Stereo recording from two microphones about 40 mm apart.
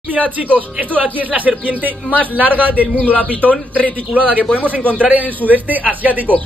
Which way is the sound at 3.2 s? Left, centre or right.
Left.